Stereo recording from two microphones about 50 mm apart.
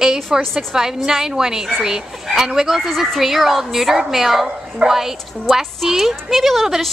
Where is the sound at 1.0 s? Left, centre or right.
Centre.